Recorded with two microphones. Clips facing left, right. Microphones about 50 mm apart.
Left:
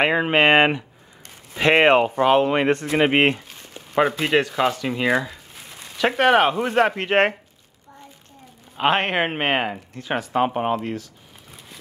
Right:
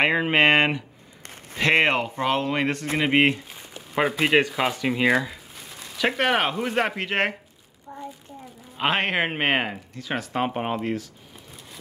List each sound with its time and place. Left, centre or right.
0.0 s speech: centre
1.6 s speech: left
2.2 s speech: centre
3.9 s speech: centre
7.1 s speech: left
7.9 s a sound: right
8.7 s speech: centre